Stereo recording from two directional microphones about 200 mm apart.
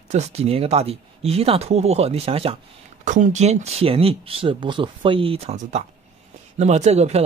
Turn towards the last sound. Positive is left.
turn(degrees=-35)  # may be behind; listen again after turning